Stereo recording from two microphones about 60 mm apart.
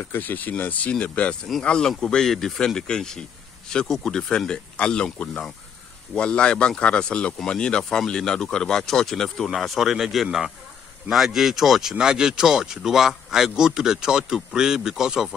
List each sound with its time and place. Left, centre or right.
0.0 s speech: left
1.6 s speech: centre